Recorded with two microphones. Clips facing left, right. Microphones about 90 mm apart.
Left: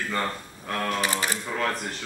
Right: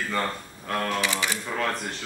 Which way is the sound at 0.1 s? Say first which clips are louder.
Right 1 dB; centre (ahead or behind).